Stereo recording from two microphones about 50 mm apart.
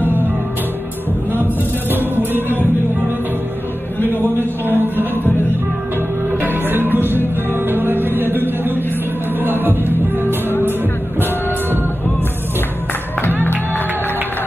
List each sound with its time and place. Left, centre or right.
1.3 s music: right
4.0 s speech: right
6.4 s music: right
9.4 s music: right